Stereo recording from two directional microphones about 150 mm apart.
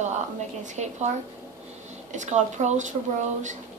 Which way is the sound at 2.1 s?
50° right (ahead or behind).